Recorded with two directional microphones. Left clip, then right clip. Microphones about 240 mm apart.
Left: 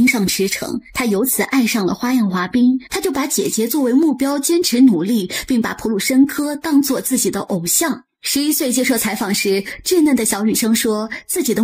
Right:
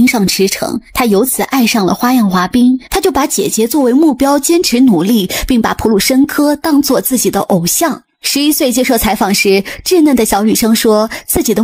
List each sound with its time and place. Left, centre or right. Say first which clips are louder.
0.0 s a woman's voice: right 5 dB; right